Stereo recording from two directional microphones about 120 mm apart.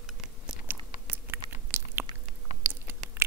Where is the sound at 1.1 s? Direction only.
20° right (ahead or behind).